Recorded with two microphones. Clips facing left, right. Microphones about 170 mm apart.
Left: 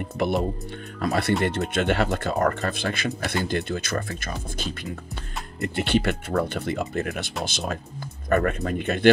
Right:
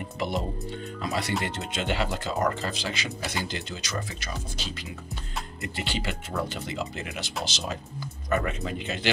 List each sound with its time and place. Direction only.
1.0 s speech: 60° left (ahead or behind)